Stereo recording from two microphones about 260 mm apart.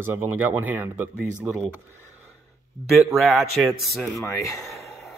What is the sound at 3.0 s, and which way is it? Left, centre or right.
A man's voice, centre.